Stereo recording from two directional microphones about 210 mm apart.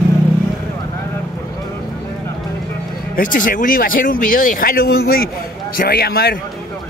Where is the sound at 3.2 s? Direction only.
40° left (ahead or behind).